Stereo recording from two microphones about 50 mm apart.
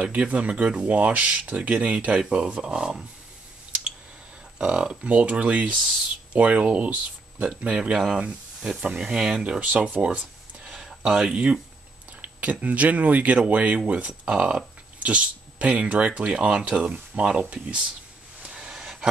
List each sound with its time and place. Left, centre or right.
0.0 s speech: right
4.6 s speech: right
18.4 s a sound: centre